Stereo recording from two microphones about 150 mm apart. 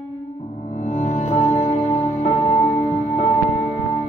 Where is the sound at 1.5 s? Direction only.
35° left (ahead or behind).